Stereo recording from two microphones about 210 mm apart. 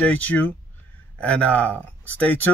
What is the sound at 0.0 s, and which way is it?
Speech, 10° left (ahead or behind).